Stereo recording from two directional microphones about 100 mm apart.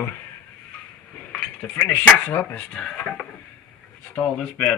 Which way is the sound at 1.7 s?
15° left (ahead or behind).